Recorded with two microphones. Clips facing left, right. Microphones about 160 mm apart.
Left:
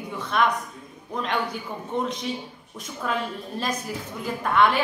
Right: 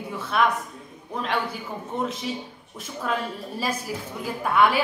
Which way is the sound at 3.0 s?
5° right (ahead or behind).